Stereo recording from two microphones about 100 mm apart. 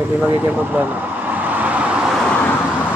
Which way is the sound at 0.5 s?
15° right (ahead or behind).